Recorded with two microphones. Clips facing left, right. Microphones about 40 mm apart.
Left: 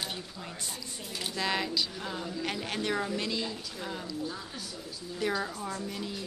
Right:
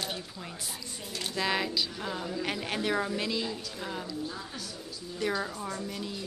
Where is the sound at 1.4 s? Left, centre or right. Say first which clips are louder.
Right 1 dB; centre.